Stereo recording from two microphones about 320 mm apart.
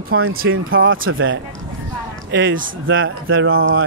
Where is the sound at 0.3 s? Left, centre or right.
Right.